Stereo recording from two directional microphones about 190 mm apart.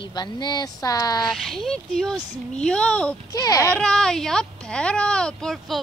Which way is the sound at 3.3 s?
15° left (ahead or behind).